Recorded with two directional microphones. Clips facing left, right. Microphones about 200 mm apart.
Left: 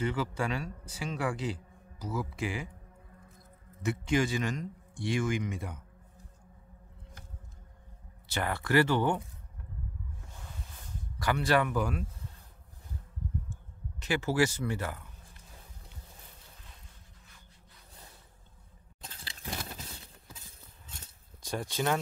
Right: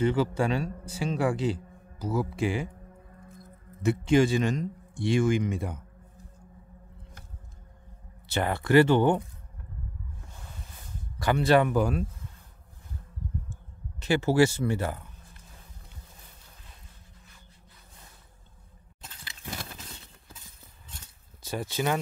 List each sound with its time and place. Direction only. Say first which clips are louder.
0.0 s a man's voice: right 7 dB; 30° right (ahead or behind)
3.8 s a man's voice: right 7 dB; 30° right (ahead or behind)
8.3 s a man's voice: right 6 dB; 25° right (ahead or behind)
11.1 s a man's voice: right 6 dB; 25° right (ahead or behind)
13.9 s a man's voice: right 6 dB; 30° right (ahead or behind)
21.4 s speech: right 3 dB; 5° right (ahead or behind)